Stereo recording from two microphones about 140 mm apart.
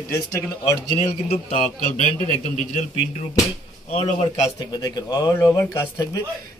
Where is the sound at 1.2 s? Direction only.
55° left (ahead or behind).